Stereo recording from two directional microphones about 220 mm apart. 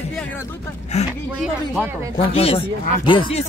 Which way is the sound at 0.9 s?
30° left (ahead or behind).